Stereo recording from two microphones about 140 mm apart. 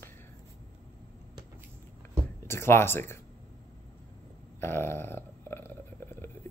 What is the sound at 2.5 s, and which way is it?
Speech, 15° left (ahead or behind).